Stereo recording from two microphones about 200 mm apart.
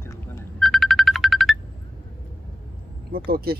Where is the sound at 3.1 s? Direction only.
50° right (ahead or behind).